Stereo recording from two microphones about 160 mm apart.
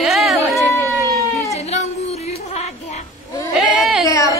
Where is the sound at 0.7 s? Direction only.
20° left (ahead or behind).